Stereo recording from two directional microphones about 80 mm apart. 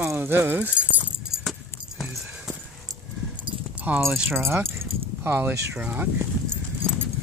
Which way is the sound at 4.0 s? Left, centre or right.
Right.